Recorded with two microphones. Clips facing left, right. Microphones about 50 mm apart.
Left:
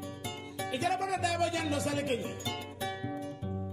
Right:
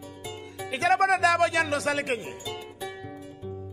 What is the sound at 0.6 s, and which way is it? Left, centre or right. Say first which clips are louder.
Speech: right 9 dB; right.